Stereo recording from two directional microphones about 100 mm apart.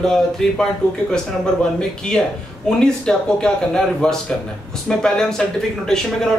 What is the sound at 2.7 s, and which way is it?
A man's voice, 10° left (ahead or behind).